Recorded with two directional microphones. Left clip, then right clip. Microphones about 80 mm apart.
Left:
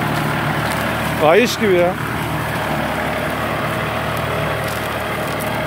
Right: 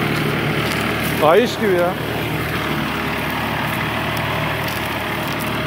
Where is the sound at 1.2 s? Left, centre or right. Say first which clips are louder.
Left 1 dB; left.